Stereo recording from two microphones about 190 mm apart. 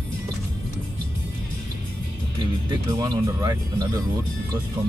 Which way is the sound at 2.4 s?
20° right (ahead or behind).